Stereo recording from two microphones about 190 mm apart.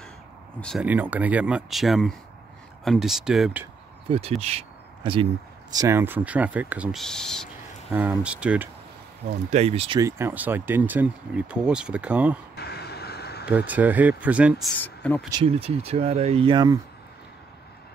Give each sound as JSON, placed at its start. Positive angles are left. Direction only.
{"t": 0.6, "sound": "speech", "side_deg": 5}
{"t": 0.8, "sound": "speech", "side_deg": -10}
{"t": 4.1, "sound": "speech", "side_deg": -30}
{"t": 5.8, "sound": "speech", "side_deg": -15}
{"t": 7.9, "sound": "speech", "side_deg": -5}
{"t": 9.5, "sound": "speech", "side_deg": -35}
{"t": 9.9, "sound": "speech", "side_deg": -15}
{"t": 12.5, "sound": "vehicle", "side_deg": 55}
{"t": 13.5, "sound": "speech", "side_deg": -10}
{"t": 14.8, "sound": "speech", "side_deg": 10}
{"t": 15.3, "sound": "speech", "side_deg": -30}